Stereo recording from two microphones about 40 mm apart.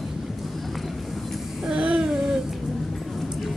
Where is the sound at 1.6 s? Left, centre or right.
Centre.